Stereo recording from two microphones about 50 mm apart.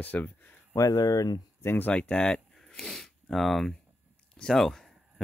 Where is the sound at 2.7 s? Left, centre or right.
Centre.